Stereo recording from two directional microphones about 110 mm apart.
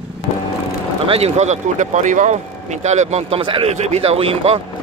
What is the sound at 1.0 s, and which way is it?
Speech, 65° right (ahead or behind).